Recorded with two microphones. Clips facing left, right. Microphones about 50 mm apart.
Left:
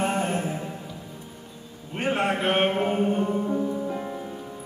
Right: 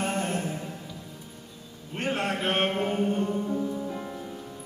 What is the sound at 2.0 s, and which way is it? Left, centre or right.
Music, centre.